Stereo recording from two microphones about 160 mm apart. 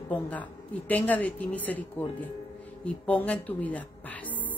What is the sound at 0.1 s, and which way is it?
A woman's voice, 10° left (ahead or behind).